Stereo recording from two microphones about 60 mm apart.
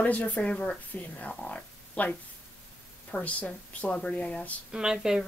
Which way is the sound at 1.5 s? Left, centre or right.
Left.